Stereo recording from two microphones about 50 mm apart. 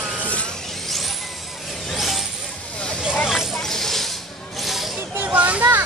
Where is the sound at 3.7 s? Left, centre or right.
Centre.